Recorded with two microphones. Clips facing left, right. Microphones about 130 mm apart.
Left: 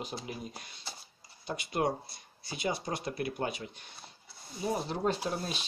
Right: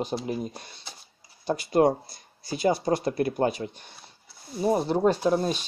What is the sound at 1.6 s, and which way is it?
Speech, 40° right (ahead or behind).